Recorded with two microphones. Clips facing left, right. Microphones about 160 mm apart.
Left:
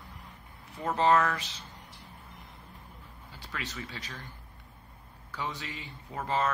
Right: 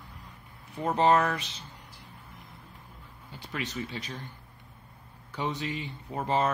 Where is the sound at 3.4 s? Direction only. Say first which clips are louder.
Right 5 dB; 20° right (ahead or behind).